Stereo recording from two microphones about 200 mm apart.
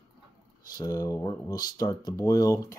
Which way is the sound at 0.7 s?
15° left (ahead or behind).